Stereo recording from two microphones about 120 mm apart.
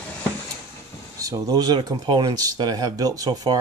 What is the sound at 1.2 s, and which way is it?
Speech, 30° right (ahead or behind).